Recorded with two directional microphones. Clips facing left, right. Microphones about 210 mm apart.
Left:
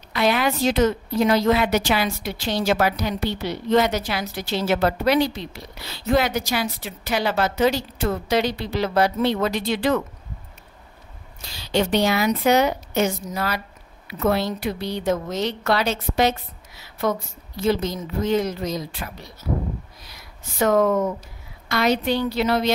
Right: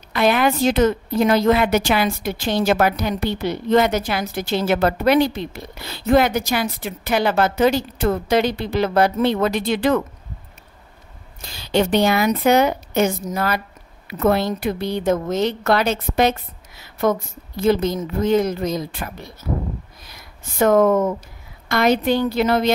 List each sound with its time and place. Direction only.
0.1 s a woman's voice: 50° right (ahead or behind)
11.4 s a woman's voice: 50° right (ahead or behind)